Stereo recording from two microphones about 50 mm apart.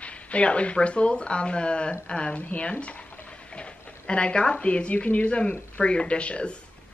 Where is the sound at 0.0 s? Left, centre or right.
Left.